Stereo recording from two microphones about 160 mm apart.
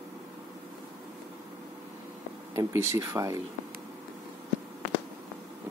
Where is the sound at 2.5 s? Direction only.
15° right (ahead or behind).